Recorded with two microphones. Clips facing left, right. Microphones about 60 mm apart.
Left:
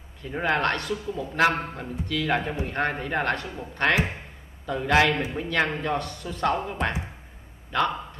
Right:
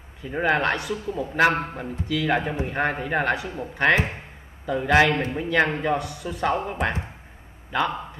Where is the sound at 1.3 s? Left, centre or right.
Centre.